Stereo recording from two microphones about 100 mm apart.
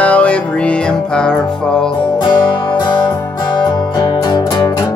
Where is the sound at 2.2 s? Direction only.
45° left (ahead or behind).